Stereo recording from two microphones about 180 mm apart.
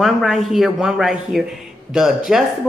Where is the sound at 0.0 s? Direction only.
Centre (ahead or behind).